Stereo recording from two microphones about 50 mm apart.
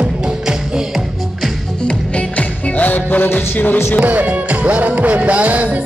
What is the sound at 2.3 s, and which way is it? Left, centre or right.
Music, left.